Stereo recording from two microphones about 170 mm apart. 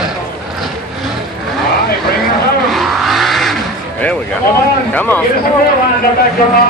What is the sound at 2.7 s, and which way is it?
Vehicle, centre (ahead or behind).